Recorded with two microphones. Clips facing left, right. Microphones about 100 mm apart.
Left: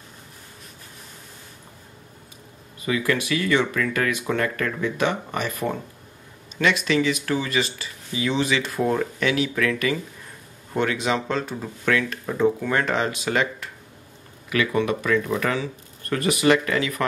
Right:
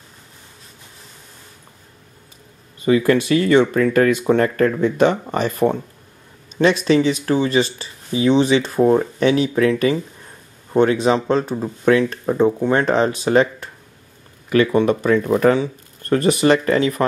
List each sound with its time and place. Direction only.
2.8 s speech: 35° right (ahead or behind)